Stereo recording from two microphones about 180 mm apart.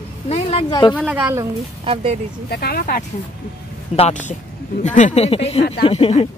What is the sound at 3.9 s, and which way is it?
Speech, 40° left (ahead or behind).